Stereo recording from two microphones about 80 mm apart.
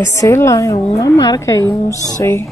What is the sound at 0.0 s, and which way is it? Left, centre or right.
A woman's voice, left.